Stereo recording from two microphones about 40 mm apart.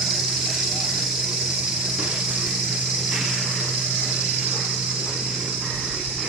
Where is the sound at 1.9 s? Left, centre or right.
Centre.